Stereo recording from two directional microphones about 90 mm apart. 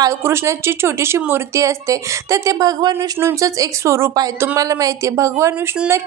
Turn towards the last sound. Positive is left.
turn(degrees=-30)  # may be behind; listen again after turning